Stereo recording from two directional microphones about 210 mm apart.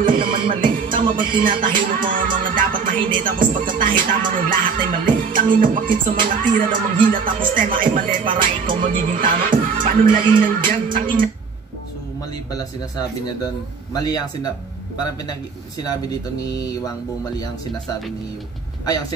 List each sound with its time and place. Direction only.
0.3 s music: 25° right (ahead or behind)
1.0 s music: 40° right (ahead or behind)
13.9 s speech: 20° left (ahead or behind)
15.8 s speech: 20° left (ahead or behind)